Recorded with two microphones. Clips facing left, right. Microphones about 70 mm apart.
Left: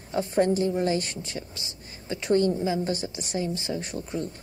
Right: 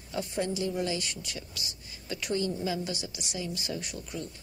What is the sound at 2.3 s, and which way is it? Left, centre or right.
Speech, left.